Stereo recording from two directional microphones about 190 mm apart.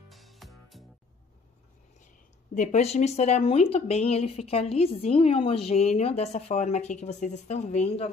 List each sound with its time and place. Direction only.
0.1 s music: centre (ahead or behind)
2.5 s speech: 40° left (ahead or behind)